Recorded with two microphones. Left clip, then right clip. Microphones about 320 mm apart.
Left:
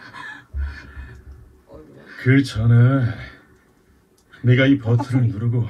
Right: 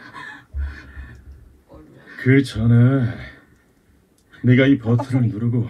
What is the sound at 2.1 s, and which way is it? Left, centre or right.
Speech, left.